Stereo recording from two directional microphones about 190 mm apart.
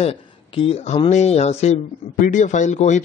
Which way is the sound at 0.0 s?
30° left (ahead or behind).